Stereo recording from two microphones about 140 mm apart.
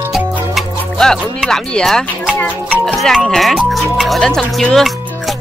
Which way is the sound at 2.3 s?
10° left (ahead or behind).